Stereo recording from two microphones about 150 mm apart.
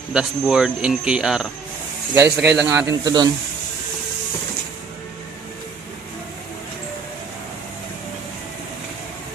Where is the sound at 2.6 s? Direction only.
20° right (ahead or behind).